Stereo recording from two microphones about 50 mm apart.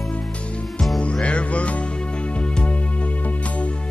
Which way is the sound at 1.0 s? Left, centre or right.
Left.